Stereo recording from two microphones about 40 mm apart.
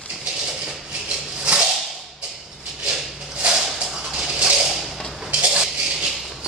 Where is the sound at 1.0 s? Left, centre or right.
Right.